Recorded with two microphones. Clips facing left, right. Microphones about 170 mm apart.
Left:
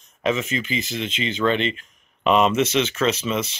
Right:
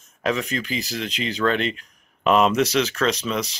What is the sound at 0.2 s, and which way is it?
Speech, centre (ahead or behind).